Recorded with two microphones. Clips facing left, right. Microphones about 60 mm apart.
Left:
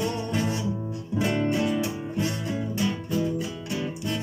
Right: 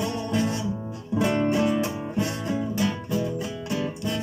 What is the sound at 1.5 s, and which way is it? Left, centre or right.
Music, centre.